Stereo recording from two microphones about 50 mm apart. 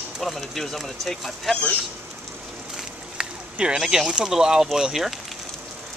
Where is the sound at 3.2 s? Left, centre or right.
Centre.